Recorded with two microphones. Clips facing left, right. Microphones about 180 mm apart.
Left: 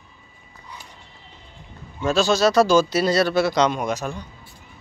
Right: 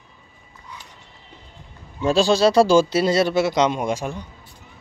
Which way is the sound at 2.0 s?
30° right (ahead or behind).